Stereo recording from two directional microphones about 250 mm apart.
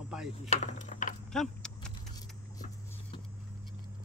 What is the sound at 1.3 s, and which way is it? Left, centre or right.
Keys jangling, centre.